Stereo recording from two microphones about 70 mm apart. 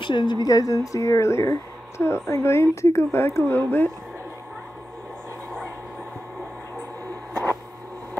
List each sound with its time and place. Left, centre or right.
0.1 s speech: left